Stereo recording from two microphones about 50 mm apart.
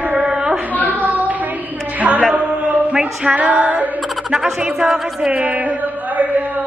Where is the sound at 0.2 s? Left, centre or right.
Centre.